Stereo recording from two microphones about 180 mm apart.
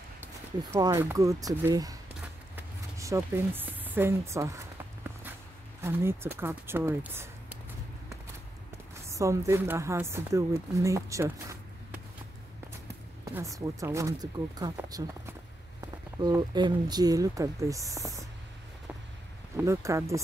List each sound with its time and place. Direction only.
0.2 s speech: 20° right (ahead or behind)
2.5 s a sound: 15° right (ahead or behind)
5.8 s speech: 15° right (ahead or behind)
9.0 s speech: 15° right (ahead or behind)
13.2 s speech: 15° right (ahead or behind)
19.5 s speech: 15° right (ahead or behind)